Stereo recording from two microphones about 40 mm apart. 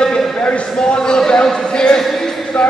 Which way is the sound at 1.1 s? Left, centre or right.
Centre.